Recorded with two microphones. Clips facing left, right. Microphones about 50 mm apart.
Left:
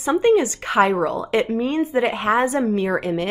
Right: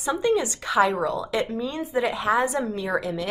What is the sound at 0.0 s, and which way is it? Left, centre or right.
A woman's voice, left.